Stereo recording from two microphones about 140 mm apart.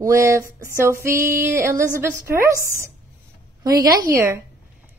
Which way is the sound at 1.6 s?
20° right (ahead or behind).